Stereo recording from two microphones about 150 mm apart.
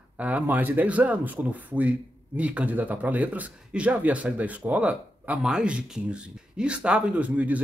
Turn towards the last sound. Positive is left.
turn(degrees=-10)  # may be behind; listen again after turning